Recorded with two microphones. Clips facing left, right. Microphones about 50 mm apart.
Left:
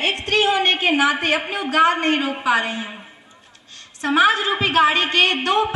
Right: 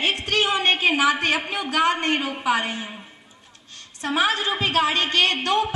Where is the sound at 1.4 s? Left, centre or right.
Centre.